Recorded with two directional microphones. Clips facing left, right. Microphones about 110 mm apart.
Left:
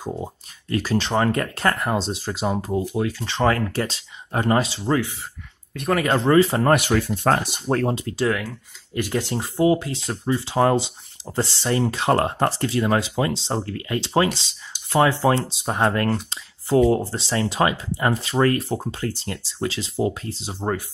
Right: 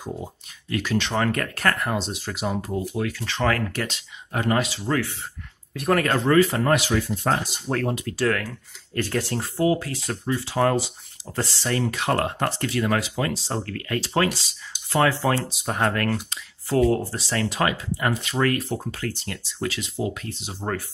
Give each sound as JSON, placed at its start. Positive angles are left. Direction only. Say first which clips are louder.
{"t": 0.0, "sound": "speech", "louder": "left 3 dB", "side_deg": 35}
{"t": 5.7, "sound": "speech", "louder": "right 1 dB", "side_deg": 0}
{"t": 6.0, "sound": "speech", "louder": "left 4 dB", "side_deg": 25}
{"t": 6.6, "sound": "speech", "louder": "left 3 dB", "side_deg": 55}
{"t": 7.6, "sound": "speech", "louder": "left 3 dB", "side_deg": 30}
{"t": 8.3, "sound": "speech", "louder": "left 1 dB", "side_deg": 15}